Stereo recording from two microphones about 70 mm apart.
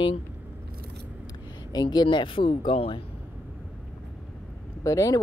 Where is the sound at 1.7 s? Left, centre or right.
Left.